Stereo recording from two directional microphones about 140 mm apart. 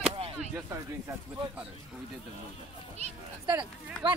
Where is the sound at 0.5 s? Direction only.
20° right (ahead or behind).